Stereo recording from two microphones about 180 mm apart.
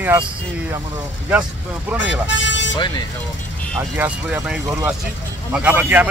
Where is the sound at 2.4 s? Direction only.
90° left.